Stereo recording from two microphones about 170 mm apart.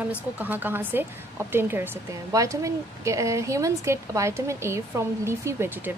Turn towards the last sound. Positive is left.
turn(degrees=-15)  # may be behind; listen again after turning